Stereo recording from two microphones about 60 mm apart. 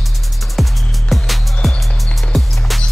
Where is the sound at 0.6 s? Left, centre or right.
Centre.